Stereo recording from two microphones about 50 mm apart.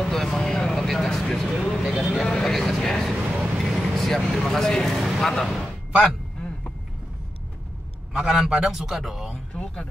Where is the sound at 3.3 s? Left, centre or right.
Centre.